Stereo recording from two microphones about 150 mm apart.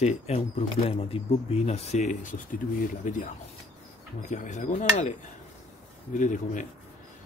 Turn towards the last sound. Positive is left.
turn(degrees=55)  # may be behind; listen again after turning